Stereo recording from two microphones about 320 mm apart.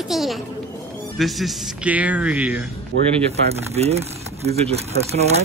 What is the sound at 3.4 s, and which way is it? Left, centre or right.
Speech, centre.